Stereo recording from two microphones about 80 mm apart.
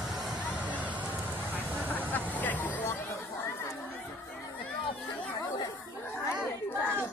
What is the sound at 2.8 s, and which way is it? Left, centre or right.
Chatter, left.